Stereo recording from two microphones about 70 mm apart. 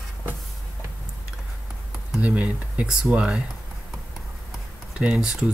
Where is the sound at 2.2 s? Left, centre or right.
Right.